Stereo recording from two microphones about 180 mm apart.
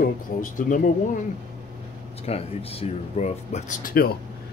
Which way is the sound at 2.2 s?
35° left (ahead or behind).